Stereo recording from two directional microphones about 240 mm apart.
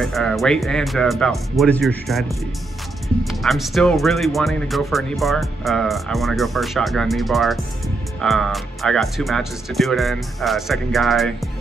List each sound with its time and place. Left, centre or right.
0.0 s speech: centre